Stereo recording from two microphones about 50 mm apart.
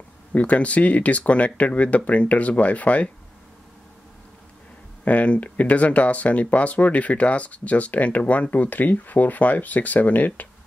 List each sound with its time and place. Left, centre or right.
0.3 s speech: left
5.0 s speech: left